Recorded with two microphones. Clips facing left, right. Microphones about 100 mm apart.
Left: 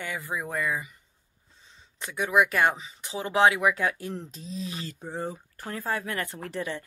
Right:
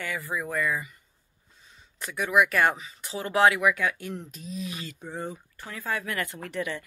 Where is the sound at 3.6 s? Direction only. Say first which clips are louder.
Even; 30° left (ahead or behind).